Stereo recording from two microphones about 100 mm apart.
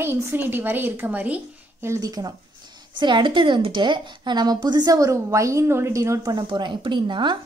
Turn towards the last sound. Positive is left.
turn(degrees=-50)  # may be behind; listen again after turning